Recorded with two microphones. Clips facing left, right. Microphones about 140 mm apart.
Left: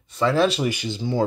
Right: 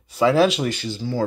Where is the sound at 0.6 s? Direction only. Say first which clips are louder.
Left 1 dB; 15° left (ahead or behind).